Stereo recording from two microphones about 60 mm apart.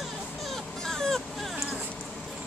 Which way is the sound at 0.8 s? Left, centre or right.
Centre.